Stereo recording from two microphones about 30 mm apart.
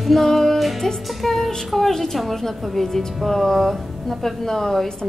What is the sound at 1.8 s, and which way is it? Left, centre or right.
A woman's voice, centre.